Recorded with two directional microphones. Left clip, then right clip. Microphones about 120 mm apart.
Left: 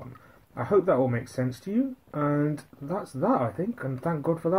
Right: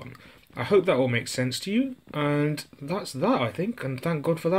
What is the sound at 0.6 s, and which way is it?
Speech, 35° right (ahead or behind).